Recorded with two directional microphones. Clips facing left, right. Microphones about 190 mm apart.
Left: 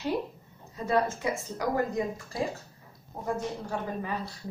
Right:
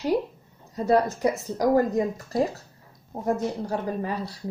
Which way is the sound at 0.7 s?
40° right (ahead or behind).